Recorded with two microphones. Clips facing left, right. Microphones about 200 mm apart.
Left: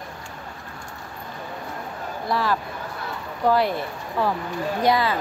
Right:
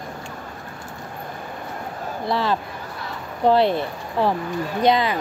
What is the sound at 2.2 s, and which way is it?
A woman's voice, 25° right (ahead or behind).